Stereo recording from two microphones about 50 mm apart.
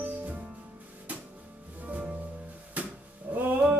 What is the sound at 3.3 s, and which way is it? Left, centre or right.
Music, right.